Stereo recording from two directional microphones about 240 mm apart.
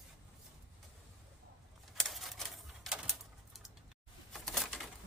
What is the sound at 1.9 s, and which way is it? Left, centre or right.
Typewriter, centre.